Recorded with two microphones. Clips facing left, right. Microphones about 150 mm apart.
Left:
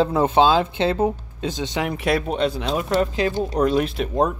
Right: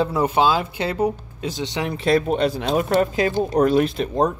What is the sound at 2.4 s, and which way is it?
Speech, 45° right (ahead or behind).